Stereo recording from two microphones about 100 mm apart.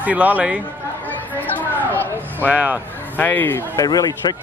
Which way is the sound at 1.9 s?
20° right (ahead or behind).